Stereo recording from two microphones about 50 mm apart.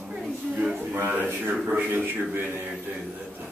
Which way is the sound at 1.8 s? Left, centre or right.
Right.